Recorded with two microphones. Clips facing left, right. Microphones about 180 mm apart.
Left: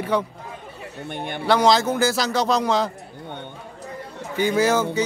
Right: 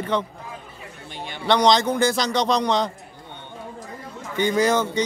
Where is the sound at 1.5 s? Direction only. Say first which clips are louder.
Even; 5° left (ahead or behind).